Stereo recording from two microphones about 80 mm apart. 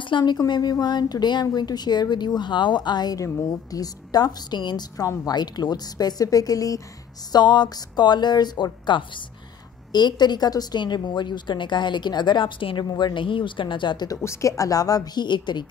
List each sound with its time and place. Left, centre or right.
0.0 s speech: left
0.4 s a woman's voice: left
3.4 s a woman's voice: left
7.3 s a woman's voice: left
9.9 s a woman's voice: left
14.0 s speech: left
15.2 s a woman's voice: left